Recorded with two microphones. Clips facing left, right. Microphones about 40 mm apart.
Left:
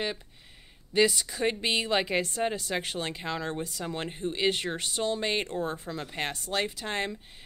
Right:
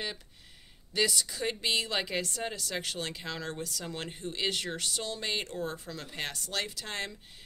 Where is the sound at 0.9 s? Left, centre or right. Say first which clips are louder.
Left 5 dB; left.